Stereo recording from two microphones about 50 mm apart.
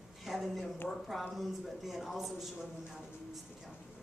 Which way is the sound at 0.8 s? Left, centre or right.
Centre.